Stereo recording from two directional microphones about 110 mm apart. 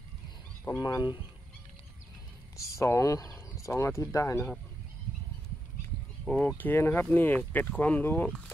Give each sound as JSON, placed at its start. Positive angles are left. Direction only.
{"t": 0.7, "sound": "speech", "side_deg": 35}
{"t": 2.5, "sound": "speech", "side_deg": 30}
{"t": 6.2, "sound": "speech", "side_deg": 10}